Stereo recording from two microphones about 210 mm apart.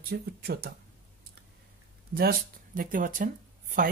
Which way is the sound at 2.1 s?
45° right (ahead or behind).